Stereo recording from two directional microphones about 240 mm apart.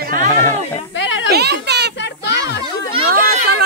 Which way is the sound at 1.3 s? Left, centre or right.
Right.